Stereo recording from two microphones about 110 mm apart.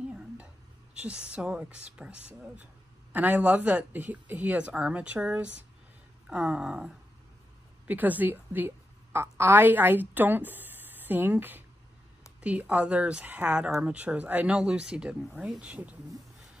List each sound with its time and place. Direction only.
0.9 s a woman's voice: 10° right (ahead or behind)